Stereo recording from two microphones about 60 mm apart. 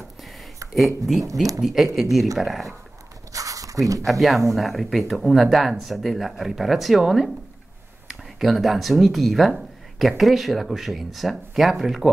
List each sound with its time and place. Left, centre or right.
0.7 s speech: centre
3.3 s a sound: right
4.0 s speech: centre